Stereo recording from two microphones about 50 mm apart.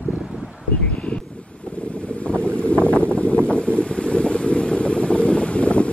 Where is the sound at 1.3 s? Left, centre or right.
Left.